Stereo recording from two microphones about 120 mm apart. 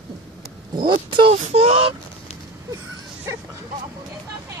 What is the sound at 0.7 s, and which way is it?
Speech, 45° right (ahead or behind).